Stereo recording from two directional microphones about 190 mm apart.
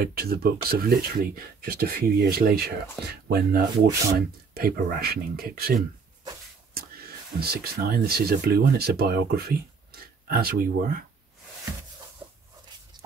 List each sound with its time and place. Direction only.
0.0 s speech: 55° right (ahead or behind)